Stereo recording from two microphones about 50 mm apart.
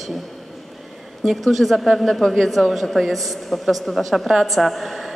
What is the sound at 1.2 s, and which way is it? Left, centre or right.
A woman's voice, centre.